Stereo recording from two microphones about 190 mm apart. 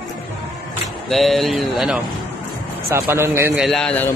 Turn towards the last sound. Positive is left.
turn(degrees=5)  # may be behind; listen again after turning